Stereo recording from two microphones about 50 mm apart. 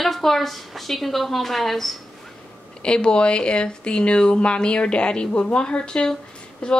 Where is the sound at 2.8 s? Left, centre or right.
Centre.